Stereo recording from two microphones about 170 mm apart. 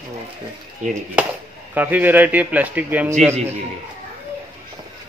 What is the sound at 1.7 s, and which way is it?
Speech, 10° right (ahead or behind).